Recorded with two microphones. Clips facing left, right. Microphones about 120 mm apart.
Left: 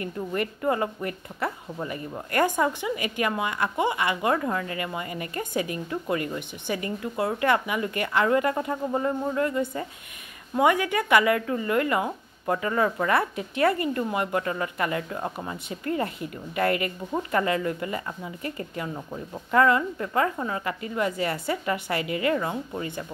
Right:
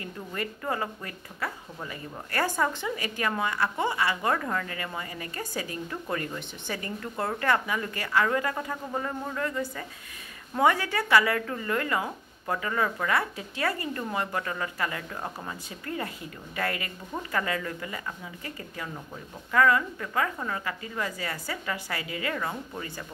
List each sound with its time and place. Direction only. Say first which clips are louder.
0.3 s speech: left 6 dB; 20° left (ahead or behind)
10.5 s speech: left 2 dB; 15° left (ahead or behind)
16.5 s speech: left 7 dB; 25° left (ahead or behind)